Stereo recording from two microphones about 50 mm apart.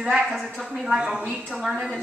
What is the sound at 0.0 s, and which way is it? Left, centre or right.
A woman's voice, centre.